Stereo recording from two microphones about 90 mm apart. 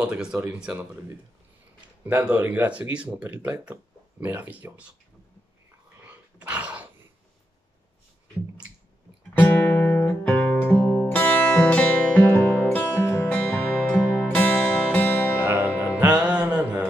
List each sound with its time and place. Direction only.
0.0 s speech: 10° right (ahead or behind)
2.0 s speech: 15° right (ahead or behind)
3.4 s speech: 25° right (ahead or behind)
6.4 s dog: 15° right (ahead or behind)
9.4 s music: 20° left (ahead or behind)
13.3 s music: 15° left (ahead or behind)
15.4 s music: 15° right (ahead or behind)